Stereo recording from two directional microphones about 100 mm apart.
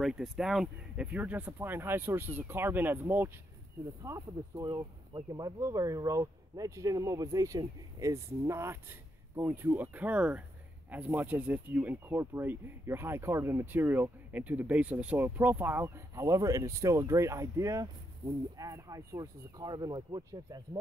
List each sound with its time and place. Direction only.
0.0 s speech: 5° right (ahead or behind)
1.0 s speech: 15° right (ahead or behind)
16.2 s speech: 35° right (ahead or behind)